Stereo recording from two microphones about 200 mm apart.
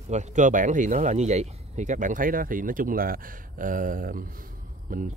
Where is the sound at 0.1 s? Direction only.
35° right (ahead or behind).